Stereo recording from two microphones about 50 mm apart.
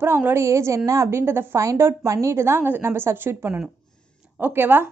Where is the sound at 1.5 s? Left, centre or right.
Right.